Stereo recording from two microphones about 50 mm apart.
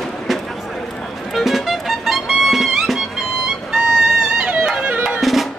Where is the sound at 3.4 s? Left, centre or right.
Centre.